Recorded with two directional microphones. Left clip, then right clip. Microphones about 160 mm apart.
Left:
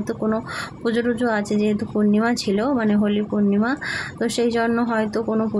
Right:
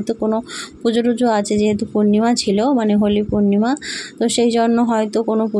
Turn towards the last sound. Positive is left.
turn(degrees=-25)  # may be behind; listen again after turning